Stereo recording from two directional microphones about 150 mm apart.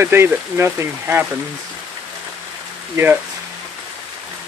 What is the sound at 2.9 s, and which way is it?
Speech, 10° right (ahead or behind).